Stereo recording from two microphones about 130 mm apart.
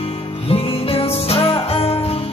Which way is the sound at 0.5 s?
50° left (ahead or behind).